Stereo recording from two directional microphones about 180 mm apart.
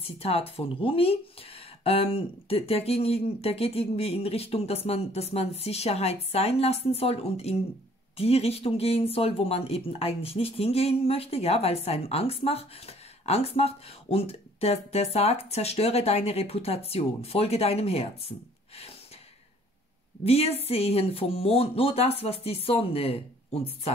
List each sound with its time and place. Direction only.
0.0 s speech: 35° left (ahead or behind)
20.2 s speech: 35° left (ahead or behind)